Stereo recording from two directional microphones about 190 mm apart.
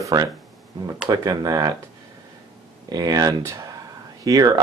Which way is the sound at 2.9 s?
20° right (ahead or behind).